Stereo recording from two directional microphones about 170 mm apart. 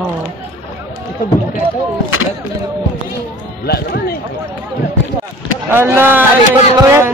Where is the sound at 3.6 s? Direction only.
65° left (ahead or behind).